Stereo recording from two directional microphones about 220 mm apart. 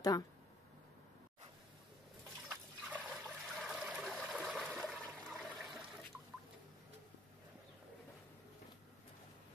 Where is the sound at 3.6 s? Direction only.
Centre (ahead or behind).